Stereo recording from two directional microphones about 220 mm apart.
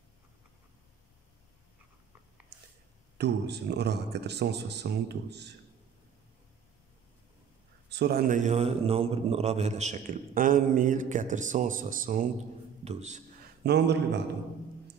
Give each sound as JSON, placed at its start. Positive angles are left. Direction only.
{"t": 3.2, "sound": "speech", "side_deg": -50}
{"t": 7.9, "sound": "a man's voice", "side_deg": -45}
{"t": 13.7, "sound": "speech", "side_deg": -50}